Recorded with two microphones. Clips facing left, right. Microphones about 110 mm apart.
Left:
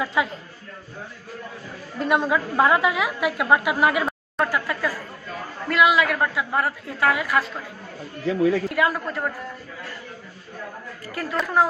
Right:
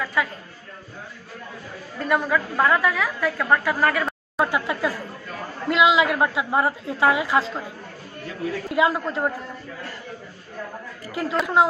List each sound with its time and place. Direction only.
0.0 s speech: 20° left (ahead or behind)
2.0 s a woman's voice: 20° left (ahead or behind)
4.5 s a woman's voice: 20° right (ahead or behind)
8.6 s a woman's voice: 20° right (ahead or behind)
11.1 s a woman's voice: 20° right (ahead or behind)